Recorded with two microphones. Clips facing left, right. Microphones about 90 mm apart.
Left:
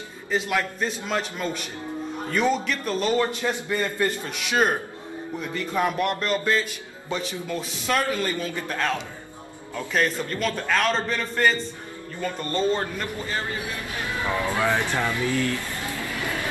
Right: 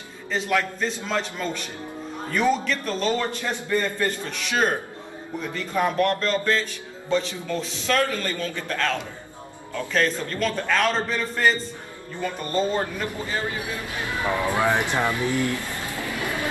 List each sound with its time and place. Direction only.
0.3 s speech: 10° left (ahead or behind)
5.9 s a man's voice: 10° left (ahead or behind); by 12.8 s 10° right (ahead or behind)
14.2 s speech: 20° right (ahead or behind)